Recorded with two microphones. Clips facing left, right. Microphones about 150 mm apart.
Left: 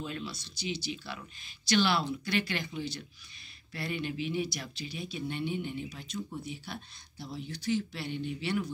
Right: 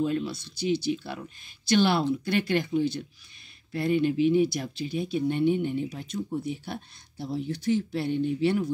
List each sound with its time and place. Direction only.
0.0 s speech: 50° right (ahead or behind)